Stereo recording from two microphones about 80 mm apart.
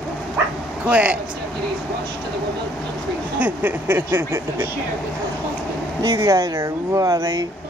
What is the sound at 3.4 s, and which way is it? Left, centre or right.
Speech, right.